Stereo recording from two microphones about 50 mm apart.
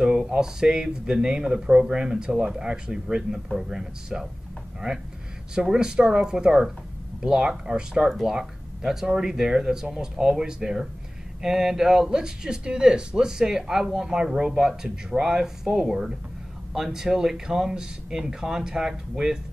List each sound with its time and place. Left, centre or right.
0.0 s speech: centre
5.5 s speech: centre